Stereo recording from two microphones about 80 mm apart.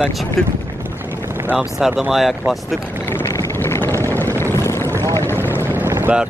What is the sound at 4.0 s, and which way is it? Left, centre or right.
Vehicle, left.